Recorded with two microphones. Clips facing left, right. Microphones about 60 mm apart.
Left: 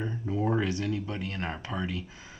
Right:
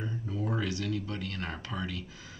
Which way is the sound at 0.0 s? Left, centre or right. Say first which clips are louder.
Left 5 dB; left.